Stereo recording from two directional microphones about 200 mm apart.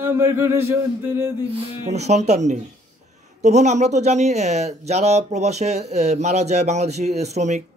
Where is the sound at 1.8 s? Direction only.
35° right (ahead or behind).